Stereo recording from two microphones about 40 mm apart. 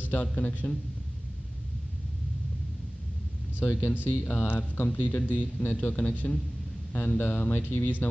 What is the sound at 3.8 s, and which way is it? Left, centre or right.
Speech, left.